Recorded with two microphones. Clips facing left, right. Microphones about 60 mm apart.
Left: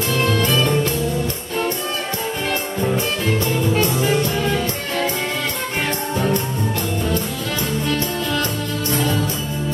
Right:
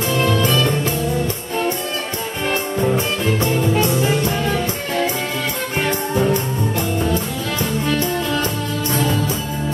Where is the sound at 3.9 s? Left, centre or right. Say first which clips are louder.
Even; centre.